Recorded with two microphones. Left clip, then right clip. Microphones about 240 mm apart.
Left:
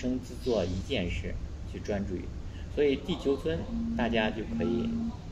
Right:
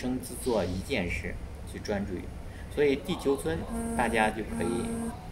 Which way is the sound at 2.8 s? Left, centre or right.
Centre.